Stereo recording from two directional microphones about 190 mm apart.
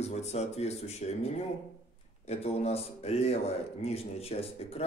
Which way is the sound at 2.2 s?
35° left (ahead or behind).